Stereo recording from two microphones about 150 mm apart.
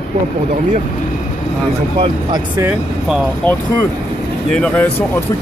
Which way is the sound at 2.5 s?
10° right (ahead or behind).